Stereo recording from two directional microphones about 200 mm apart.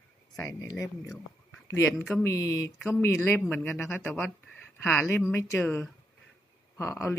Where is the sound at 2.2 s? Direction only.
15° left (ahead or behind).